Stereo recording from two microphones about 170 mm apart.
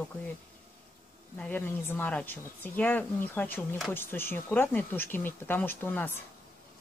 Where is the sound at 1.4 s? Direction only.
10° left (ahead or behind).